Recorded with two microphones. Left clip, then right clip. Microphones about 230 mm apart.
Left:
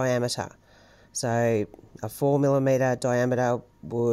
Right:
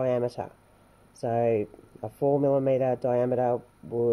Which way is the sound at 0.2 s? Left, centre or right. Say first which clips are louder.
Left 1 dB; left.